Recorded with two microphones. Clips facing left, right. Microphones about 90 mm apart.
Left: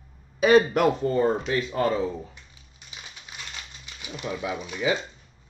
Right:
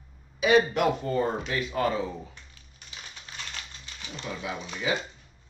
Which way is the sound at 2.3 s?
15° left (ahead or behind).